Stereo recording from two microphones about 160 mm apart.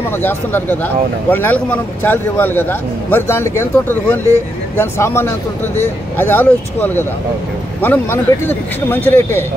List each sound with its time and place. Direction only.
0.2 s speech: 15° left (ahead or behind)